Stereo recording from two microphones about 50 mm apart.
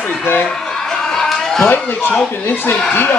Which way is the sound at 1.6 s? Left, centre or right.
Left.